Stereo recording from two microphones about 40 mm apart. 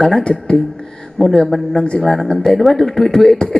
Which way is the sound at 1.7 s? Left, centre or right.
Left.